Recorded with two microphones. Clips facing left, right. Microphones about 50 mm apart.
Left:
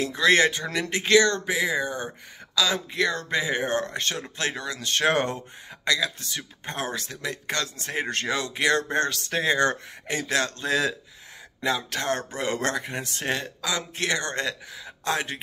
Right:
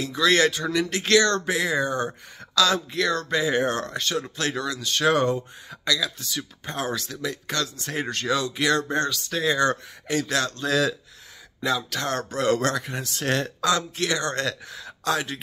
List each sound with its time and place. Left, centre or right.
0.0 s speech: left
13.3 s speech: centre
13.9 s speech: left
14.7 s a sound: centre
15.0 s speech: left